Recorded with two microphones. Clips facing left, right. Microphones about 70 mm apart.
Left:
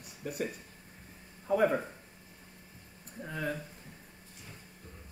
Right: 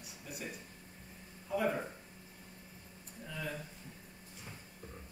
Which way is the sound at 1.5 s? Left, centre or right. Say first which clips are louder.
Left 7 dB; left.